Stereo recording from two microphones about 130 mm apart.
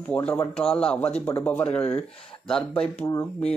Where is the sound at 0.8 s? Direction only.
10° left (ahead or behind).